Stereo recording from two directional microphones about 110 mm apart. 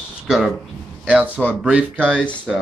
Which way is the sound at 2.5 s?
Centre (ahead or behind).